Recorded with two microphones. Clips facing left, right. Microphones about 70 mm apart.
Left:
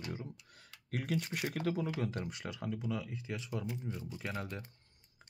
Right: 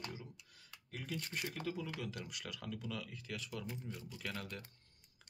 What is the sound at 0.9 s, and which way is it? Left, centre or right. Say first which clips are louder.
Speech: left 7 dB; left.